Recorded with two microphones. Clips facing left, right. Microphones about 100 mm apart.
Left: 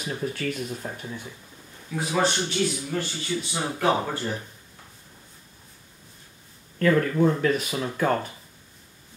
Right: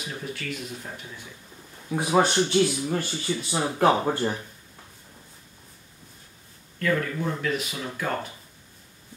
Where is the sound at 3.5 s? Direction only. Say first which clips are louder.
Right 3 dB; 45° right (ahead or behind).